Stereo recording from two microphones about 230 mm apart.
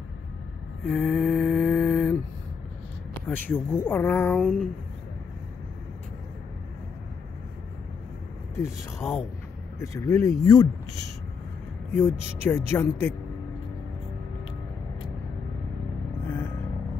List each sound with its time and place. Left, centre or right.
0.8 s lullaby: centre
3.3 s speech: centre
8.5 s speech: centre
11.9 s speech: centre